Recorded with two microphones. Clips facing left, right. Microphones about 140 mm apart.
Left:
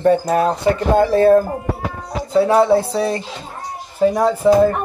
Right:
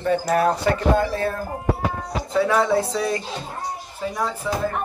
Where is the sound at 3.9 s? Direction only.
50° left (ahead or behind).